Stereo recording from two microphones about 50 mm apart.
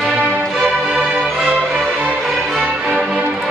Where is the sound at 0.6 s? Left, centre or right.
Right.